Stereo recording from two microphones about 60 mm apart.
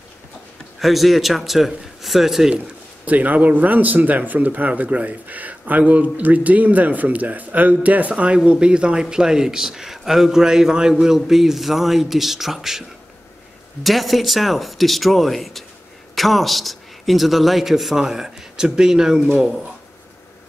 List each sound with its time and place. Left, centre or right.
0.7 s a man's voice: centre
3.1 s a man's voice: right; by 12.8 s centre
13.8 s a man's voice: centre